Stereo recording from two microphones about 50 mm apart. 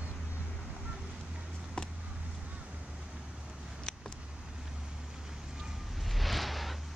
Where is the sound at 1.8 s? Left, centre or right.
Centre.